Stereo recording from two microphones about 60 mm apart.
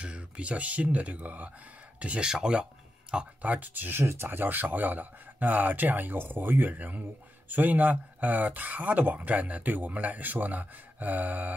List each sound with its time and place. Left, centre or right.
0.0 s speech: centre
2.2 s speech: centre
3.5 s speech: right
4.0 s speech: right